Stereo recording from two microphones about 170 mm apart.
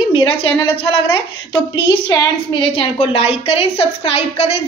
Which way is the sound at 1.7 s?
25° left (ahead or behind).